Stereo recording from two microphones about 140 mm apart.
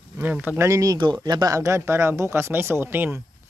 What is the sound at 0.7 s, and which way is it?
A man's voice, 25° right (ahead or behind).